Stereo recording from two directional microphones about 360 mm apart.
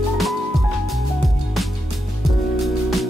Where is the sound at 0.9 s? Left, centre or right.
Centre.